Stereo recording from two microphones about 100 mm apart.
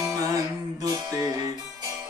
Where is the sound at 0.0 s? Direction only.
35° right (ahead or behind).